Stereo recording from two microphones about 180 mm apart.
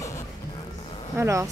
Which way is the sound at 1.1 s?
15° right (ahead or behind).